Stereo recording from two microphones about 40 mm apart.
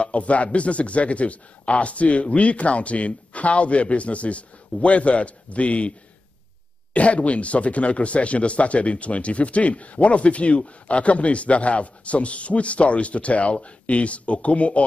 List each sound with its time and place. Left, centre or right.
0.0 s speech: left